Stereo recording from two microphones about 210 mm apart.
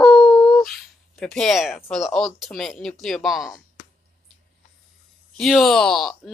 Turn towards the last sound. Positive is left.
turn(degrees=0)  # may be behind; listen again after turning